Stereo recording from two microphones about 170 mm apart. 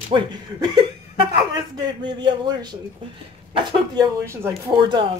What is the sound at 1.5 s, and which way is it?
Speech, 25° right (ahead or behind).